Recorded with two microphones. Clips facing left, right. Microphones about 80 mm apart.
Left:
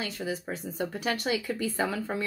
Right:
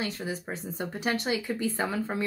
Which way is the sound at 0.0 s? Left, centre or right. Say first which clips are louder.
Even; right.